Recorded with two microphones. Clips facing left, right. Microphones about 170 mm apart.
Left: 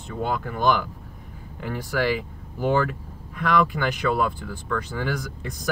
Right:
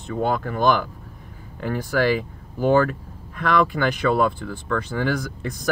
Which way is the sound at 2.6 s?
45° right (ahead or behind).